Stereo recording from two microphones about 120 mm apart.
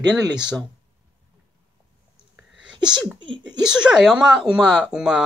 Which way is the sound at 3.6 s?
5° right (ahead or behind).